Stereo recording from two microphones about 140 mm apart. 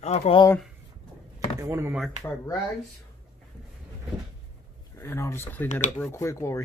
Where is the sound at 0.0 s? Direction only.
45° left (ahead or behind).